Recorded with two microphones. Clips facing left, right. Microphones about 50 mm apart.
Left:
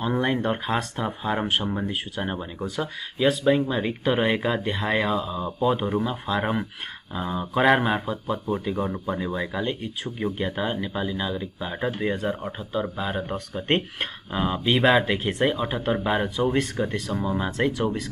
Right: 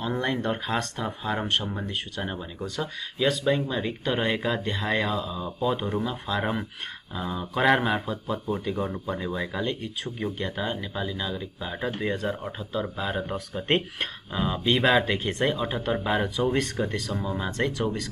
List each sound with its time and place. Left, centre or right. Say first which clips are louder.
0.0 s speech: left 3 dB; centre
7.6 s speech: left 2 dB; centre
14.3 s speech: left 2 dB; centre